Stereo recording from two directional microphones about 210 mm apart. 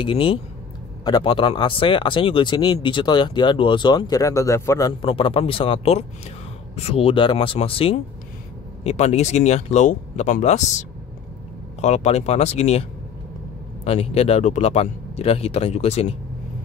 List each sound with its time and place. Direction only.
0.0 s speech: 25° left (ahead or behind)
13.8 s speech: 30° left (ahead or behind)